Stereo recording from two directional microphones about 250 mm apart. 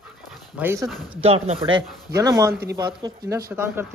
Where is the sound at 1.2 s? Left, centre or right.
Right.